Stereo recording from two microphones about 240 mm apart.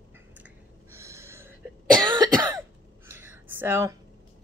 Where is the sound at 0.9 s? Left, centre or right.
Centre.